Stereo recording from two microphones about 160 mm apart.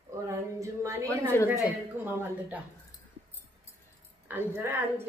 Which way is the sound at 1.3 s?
15° left (ahead or behind).